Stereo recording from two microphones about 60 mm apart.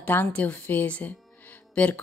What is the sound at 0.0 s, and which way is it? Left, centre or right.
Speech, left.